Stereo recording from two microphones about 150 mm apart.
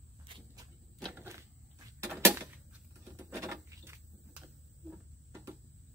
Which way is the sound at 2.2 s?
15° right (ahead or behind).